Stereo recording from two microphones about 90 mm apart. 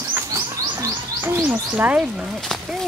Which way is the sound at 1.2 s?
20° right (ahead or behind).